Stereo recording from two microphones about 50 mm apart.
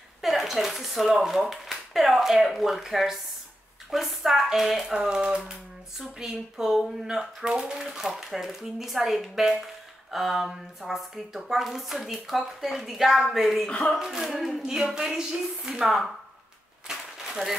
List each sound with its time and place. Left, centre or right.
0.2 s a woman's voice: centre
13.7 s speech: left
13.9 s speech: centre
16.8 s a sound: centre